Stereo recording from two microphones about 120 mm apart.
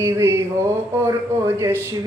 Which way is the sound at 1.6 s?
20° right (ahead or behind).